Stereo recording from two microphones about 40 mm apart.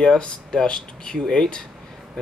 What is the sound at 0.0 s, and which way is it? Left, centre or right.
Speech, left.